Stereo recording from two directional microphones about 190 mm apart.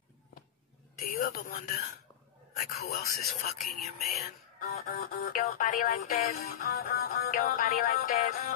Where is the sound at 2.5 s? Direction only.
55° left (ahead or behind).